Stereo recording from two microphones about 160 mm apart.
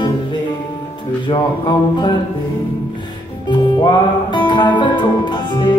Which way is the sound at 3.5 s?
30° left (ahead or behind).